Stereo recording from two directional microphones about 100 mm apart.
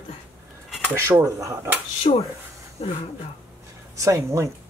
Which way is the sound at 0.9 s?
30° right (ahead or behind).